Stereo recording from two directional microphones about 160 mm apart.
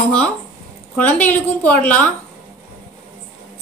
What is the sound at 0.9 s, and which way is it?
A woman's voice, 10° left (ahead or behind).